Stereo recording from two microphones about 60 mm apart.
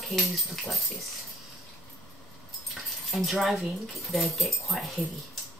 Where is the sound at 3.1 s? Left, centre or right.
Centre.